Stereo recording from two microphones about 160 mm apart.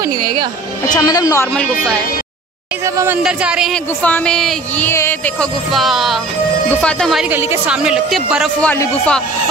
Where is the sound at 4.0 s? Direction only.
5° left (ahead or behind).